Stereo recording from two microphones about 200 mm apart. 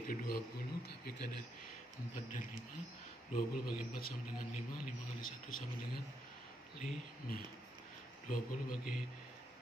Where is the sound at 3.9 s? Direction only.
45° left (ahead or behind).